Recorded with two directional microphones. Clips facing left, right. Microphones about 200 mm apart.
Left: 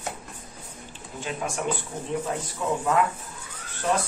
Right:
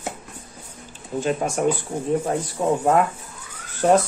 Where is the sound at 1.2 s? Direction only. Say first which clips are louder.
Right 7 dB; 45° right (ahead or behind).